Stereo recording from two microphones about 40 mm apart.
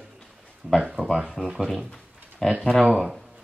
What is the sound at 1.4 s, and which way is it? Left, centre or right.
Speech, centre.